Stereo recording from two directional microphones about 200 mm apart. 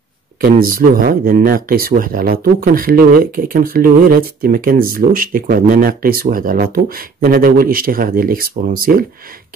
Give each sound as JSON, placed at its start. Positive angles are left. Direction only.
{"t": 0.4, "sound": "speech", "side_deg": -45}